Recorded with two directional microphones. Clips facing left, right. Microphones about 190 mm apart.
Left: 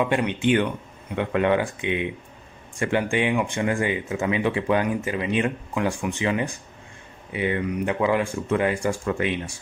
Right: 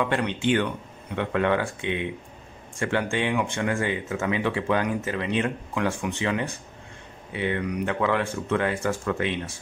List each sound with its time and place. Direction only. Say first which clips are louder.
0.1 s speech: left 2 dB; 15° left (ahead or behind)